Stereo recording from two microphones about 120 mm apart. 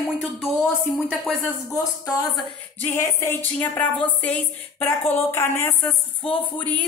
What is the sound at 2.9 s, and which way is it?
Speech, 25° left (ahead or behind).